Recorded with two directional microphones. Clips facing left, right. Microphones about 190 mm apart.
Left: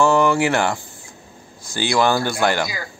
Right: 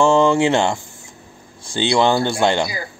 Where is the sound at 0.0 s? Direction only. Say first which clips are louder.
Right 2 dB; 25° right (ahead or behind).